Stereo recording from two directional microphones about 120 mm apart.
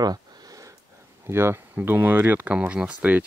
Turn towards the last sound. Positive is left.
turn(degrees=-10)  # may be behind; listen again after turning